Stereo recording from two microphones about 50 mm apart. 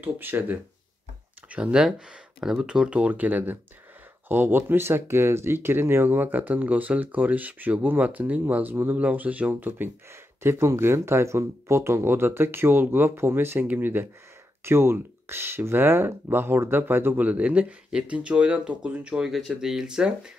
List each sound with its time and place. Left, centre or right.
0.0 s speech: right
1.5 s speech: centre; by 9.8 s right
10.4 s speech: right
13.1 s speech: right
19.3 s speech: centre